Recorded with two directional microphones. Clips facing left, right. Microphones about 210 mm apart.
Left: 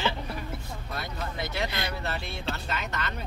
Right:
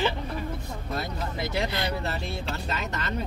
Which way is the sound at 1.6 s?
35° right (ahead or behind).